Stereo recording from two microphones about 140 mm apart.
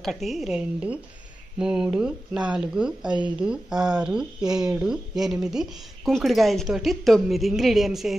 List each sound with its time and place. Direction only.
0.0 s a woman's voice: centre (ahead or behind)